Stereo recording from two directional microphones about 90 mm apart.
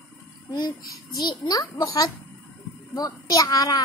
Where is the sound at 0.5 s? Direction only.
55° left (ahead or behind).